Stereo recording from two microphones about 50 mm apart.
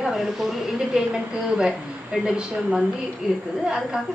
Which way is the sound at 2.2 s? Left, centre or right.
Centre.